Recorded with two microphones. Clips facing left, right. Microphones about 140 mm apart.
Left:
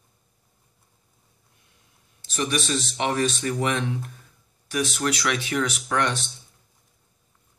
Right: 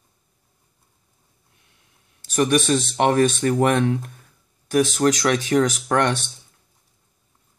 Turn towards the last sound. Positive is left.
turn(degrees=-45)  # may be behind; listen again after turning